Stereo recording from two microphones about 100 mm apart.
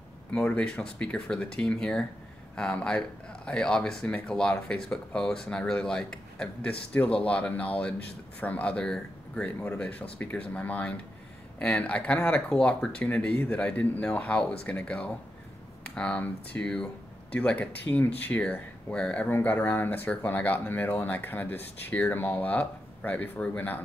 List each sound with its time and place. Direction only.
0.3 s speech: 15° left (ahead or behind)